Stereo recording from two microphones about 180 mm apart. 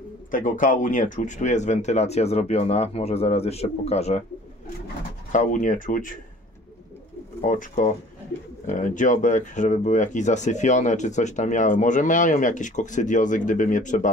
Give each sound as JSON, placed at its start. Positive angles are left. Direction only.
{"t": 0.3, "sound": "speech", "side_deg": 45}
{"t": 5.3, "sound": "speech", "side_deg": 45}
{"t": 7.4, "sound": "speech", "side_deg": 45}